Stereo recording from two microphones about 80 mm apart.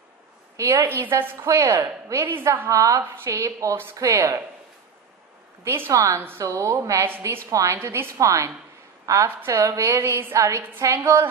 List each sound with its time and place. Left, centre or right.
0.6 s a woman's voice: right
2.7 s a woman's voice: right
5.8 s a woman's voice: right
7.1 s a woman's voice: right